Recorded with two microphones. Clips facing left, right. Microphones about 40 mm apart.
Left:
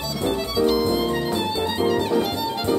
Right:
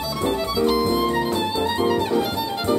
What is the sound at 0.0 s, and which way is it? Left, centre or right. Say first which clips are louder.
Music: right 1 dB; centre.